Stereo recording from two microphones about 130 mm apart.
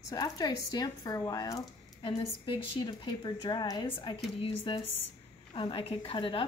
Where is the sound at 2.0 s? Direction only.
45° left (ahead or behind).